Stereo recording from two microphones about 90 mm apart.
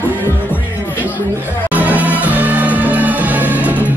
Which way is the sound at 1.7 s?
15° right (ahead or behind).